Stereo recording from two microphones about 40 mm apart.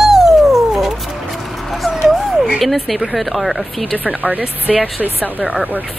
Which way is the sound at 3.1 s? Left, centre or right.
Centre.